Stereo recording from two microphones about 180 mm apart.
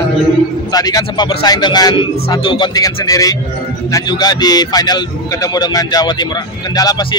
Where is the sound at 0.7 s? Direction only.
20° left (ahead or behind).